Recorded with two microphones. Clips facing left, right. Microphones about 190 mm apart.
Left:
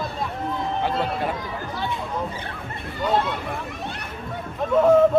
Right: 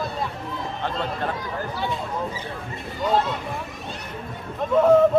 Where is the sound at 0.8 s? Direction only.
10° left (ahead or behind).